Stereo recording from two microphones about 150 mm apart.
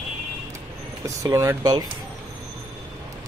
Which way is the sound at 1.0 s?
20° right (ahead or behind).